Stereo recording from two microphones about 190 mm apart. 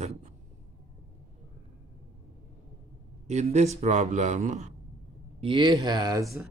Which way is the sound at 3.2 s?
35° right (ahead or behind).